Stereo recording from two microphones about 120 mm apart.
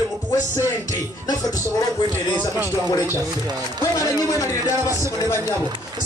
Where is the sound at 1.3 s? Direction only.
30° left (ahead or behind).